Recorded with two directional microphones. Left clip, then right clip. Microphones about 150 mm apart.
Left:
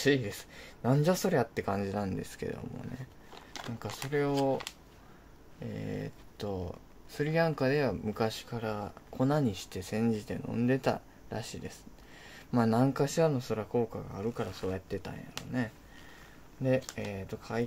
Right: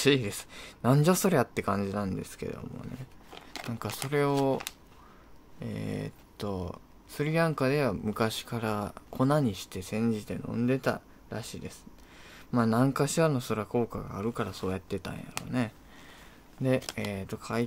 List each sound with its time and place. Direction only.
0.0 s speech: 35° right (ahead or behind); by 2.9 s 10° right (ahead or behind)
3.8 s speech: 35° right (ahead or behind)
9.2 s speech: 20° right (ahead or behind)
16.6 s speech: 30° right (ahead or behind)